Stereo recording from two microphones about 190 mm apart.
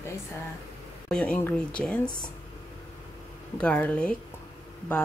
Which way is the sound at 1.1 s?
5° left (ahead or behind).